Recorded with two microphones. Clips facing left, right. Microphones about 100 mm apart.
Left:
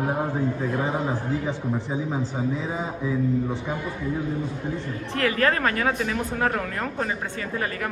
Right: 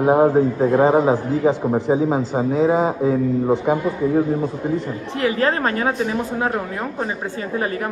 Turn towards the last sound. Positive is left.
turn(degrees=-30)  # may be behind; listen again after turning